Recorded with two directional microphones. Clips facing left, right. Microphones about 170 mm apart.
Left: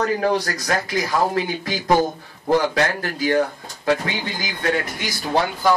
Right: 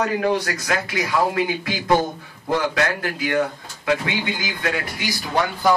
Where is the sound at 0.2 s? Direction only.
35° left (ahead or behind).